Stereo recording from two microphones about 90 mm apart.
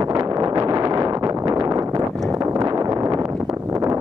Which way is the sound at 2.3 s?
35° right (ahead or behind).